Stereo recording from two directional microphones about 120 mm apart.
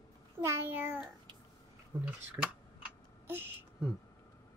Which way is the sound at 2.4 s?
15° right (ahead or behind).